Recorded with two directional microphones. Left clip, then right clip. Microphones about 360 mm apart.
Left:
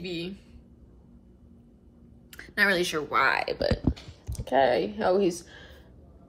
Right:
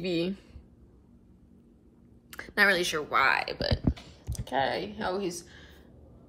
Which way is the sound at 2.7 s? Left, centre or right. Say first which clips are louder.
Left 1 dB; centre.